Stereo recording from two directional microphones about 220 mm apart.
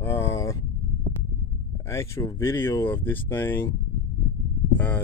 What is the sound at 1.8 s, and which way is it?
Speech, 15° left (ahead or behind).